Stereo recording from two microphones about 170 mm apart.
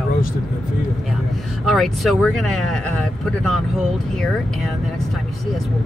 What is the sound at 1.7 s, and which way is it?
Speech, centre (ahead or behind).